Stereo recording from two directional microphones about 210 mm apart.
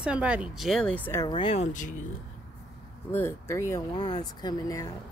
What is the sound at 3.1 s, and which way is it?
Speech, 10° left (ahead or behind).